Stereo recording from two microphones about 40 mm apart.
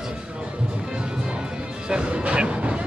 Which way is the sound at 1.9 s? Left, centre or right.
Right.